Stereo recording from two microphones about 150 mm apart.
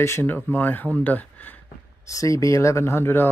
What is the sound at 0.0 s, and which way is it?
Speech, 15° left (ahead or behind).